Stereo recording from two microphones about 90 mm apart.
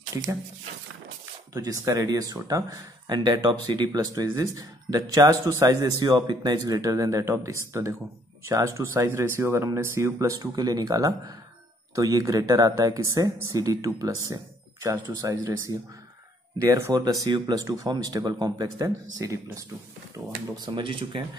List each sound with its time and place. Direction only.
1.5 s speech: 40° right (ahead or behind)
5.9 s speech: 50° right (ahead or behind); by 10.5 s 35° right (ahead or behind)
10.5 s speech: 45° right (ahead or behind)
20.5 s speech: 55° right (ahead or behind)